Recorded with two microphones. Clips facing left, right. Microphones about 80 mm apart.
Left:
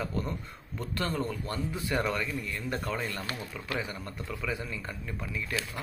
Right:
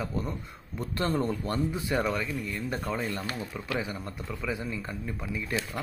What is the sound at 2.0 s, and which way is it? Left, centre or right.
Speech, centre.